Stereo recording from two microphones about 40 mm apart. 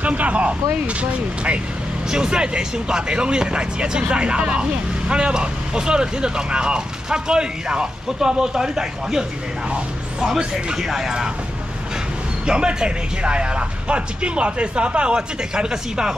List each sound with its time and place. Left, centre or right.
0.0 s speech: right
2.0 s speech: centre
10.2 s speech: centre
12.4 s speech: right